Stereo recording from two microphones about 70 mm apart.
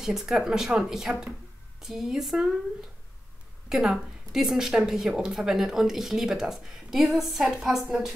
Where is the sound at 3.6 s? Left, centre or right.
Centre.